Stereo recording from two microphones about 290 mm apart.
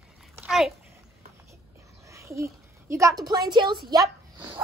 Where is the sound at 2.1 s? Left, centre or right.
Centre.